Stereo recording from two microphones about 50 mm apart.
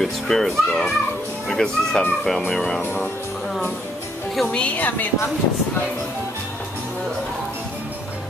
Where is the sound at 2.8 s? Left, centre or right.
Left.